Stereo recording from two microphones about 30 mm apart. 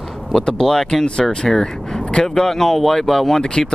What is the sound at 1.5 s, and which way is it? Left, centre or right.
Speech, centre.